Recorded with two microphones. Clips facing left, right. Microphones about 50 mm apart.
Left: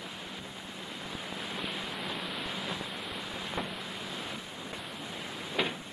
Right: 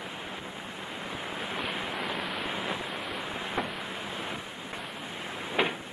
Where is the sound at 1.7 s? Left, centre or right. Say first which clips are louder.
Right 4 dB; right.